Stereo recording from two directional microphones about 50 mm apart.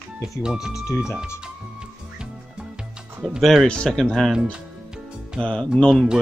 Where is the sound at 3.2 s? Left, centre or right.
Centre.